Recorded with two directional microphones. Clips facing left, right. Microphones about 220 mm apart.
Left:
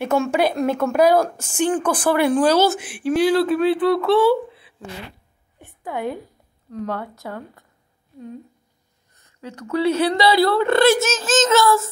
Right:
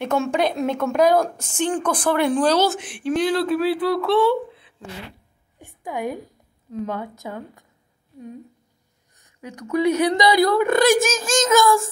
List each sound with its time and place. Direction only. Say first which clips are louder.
0.0 s a woman's voice: left 2 dB; 5° left (ahead or behind)
5.9 s speech: left 1 dB; 15° right (ahead or behind)
9.1 s speech: left 1 dB; 15° right (ahead or behind)